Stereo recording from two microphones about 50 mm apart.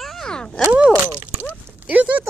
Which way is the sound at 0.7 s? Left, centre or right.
Centre.